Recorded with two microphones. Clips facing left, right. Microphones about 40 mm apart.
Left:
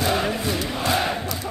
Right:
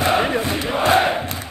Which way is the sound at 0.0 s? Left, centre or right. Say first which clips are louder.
Right 4 dB; right.